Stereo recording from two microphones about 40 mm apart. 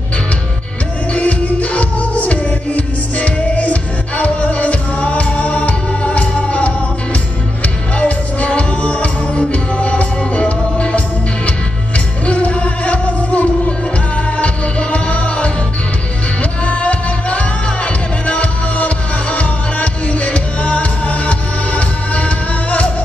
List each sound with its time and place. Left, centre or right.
1.1 s music: left
8.0 s music: left
12.3 s music: left
16.6 s music: left